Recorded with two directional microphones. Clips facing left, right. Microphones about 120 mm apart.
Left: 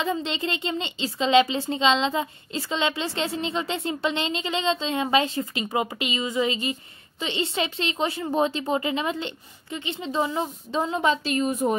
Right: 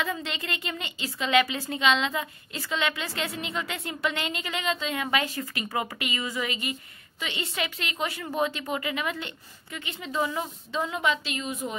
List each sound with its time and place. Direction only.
0.0 s a woman's voice: 25° left (ahead or behind); by 11.7 s 45° left (ahead or behind)